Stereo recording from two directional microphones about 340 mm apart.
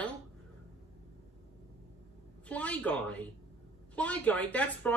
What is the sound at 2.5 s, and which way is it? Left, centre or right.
Speech, centre.